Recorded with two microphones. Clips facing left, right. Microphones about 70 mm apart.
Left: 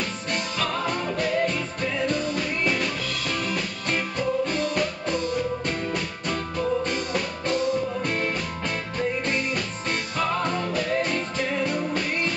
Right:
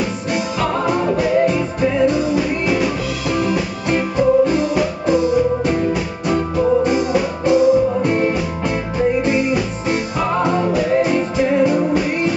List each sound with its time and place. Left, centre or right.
1.1 s music: centre